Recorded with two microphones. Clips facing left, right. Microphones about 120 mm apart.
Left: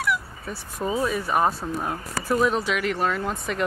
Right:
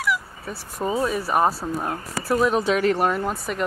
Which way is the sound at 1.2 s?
5° right (ahead or behind).